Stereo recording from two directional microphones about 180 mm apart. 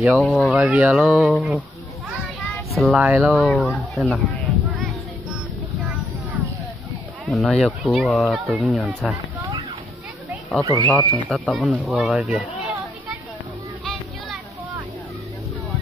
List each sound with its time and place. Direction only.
0.0 s speech: centre (ahead or behind)
2.7 s speech: centre (ahead or behind)
7.2 s speech: centre (ahead or behind)
10.6 s speech: 20° right (ahead or behind)
11.2 s speech: centre (ahead or behind)